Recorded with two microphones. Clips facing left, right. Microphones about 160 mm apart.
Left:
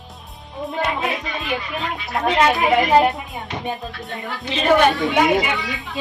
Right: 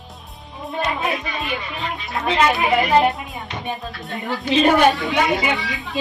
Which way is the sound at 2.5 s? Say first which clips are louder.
Left 1 dB; centre (ahead or behind).